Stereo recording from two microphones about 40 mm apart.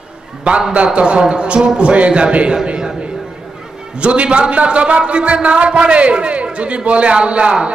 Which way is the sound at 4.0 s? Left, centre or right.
Right.